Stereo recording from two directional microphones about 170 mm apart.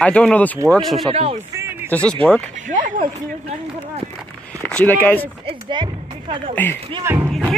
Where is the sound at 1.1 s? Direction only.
35° right (ahead or behind).